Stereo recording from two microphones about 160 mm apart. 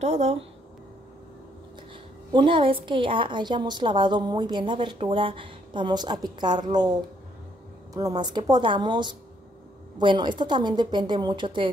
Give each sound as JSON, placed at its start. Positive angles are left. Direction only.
{"t": 0.0, "sound": "speech", "side_deg": -45}
{"t": 2.3, "sound": "a woman's voice", "side_deg": -30}